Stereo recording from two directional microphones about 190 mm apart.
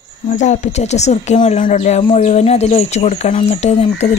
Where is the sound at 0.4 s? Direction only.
35° left (ahead or behind).